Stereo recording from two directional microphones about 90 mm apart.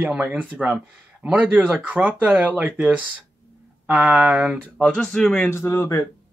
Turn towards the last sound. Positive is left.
turn(degrees=30)  # may be behind; listen again after turning